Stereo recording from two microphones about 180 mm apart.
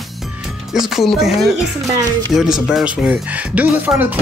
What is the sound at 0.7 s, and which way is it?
Speech, centre (ahead or behind).